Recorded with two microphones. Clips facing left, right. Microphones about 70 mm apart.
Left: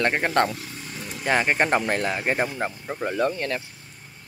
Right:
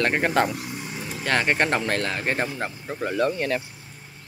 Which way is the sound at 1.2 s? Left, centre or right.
Centre.